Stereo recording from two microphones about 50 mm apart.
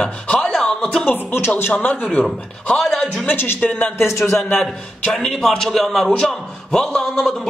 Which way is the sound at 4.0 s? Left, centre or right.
Left.